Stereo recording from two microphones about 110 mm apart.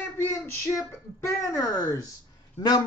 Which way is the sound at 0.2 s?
20° left (ahead or behind).